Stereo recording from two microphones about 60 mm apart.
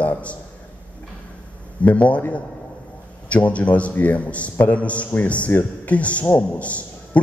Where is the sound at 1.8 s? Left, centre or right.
Left.